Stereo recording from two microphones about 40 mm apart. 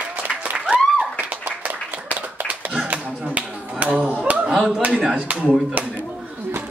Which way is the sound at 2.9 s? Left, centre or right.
Right.